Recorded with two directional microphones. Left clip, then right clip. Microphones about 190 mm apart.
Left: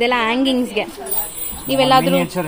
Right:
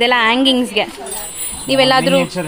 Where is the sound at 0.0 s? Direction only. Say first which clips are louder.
Right 4 dB; 5° right (ahead or behind).